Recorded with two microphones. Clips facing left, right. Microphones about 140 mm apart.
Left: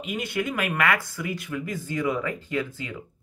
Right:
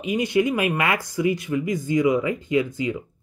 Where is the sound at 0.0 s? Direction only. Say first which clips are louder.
Right 8 dB; 20° right (ahead or behind).